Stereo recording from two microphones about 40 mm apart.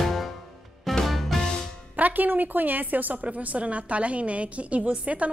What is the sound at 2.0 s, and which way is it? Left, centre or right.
A woman's voice, right.